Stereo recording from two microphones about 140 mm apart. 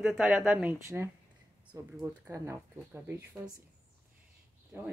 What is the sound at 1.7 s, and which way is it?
Speech, 20° right (ahead or behind).